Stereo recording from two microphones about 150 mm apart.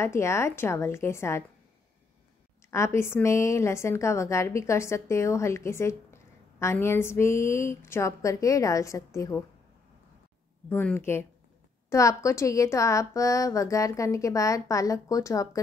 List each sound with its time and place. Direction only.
0.0 s speech: 20° left (ahead or behind)
2.7 s speech: 20° left (ahead or behind)
10.7 s speech: 15° left (ahead or behind)